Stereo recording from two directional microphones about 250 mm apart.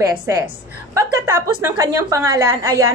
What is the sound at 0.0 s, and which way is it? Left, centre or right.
A woman's voice, centre.